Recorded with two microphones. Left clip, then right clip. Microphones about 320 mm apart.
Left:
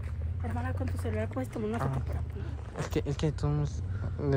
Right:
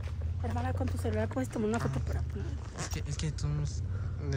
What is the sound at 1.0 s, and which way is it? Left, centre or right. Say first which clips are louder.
Speech: right 1 dB; right.